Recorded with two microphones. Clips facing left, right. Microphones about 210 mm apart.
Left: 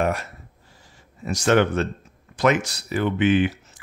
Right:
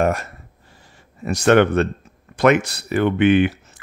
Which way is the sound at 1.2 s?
60° right (ahead or behind).